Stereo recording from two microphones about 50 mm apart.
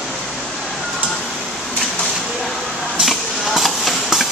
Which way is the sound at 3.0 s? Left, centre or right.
Centre.